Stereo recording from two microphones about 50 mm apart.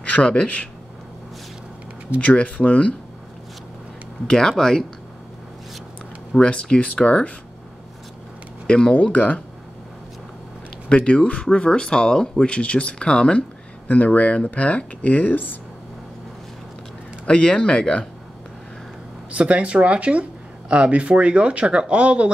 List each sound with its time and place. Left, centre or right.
0.1 s speech: centre
2.1 s speech: left
4.3 s speech: centre
6.3 s speech: centre
8.6 s speech: centre
9.0 s speech: left
10.9 s speech: left
13.8 s speech: left
17.3 s speech: centre
19.3 s speech: right